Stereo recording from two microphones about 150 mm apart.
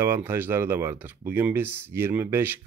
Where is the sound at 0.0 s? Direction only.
15° right (ahead or behind).